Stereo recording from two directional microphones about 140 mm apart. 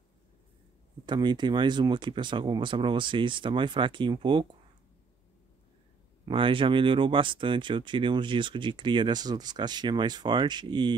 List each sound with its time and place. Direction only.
1.0 s speech: 30° right (ahead or behind)
6.2 s speech: 40° right (ahead or behind)